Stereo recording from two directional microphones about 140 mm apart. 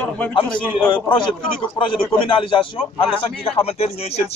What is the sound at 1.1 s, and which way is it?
A man's voice, 35° left (ahead or behind).